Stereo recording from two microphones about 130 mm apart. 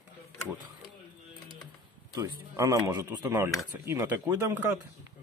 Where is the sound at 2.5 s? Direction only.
25° right (ahead or behind).